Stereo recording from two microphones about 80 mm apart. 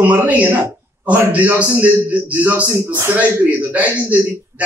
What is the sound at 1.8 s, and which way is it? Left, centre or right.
A man's voice, centre.